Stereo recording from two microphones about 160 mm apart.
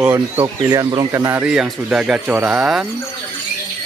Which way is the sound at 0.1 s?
20° right (ahead or behind).